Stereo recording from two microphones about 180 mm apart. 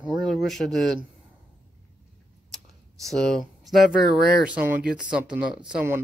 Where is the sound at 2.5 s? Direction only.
Centre (ahead or behind).